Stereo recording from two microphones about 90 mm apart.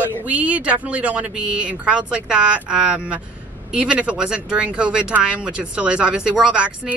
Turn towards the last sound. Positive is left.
turn(degrees=-10)  # may be behind; listen again after turning